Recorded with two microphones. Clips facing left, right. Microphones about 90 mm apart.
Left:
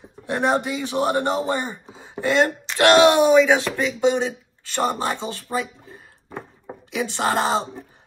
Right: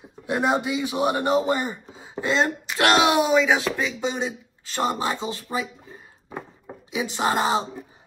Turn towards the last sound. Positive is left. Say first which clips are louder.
# left 1 dB
turn(degrees=-5)  # may be behind; listen again after turning